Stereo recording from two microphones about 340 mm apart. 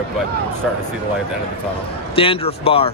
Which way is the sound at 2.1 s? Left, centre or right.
Centre.